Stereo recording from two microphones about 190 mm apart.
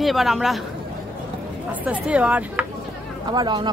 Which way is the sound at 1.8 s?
5° right (ahead or behind).